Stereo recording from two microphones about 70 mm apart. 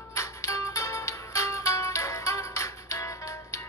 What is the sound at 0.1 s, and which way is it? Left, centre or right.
Music, left.